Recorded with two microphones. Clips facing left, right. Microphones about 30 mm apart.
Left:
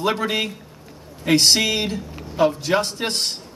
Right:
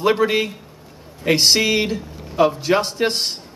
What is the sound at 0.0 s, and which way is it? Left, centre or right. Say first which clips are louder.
A man's voice: right 4 dB; centre.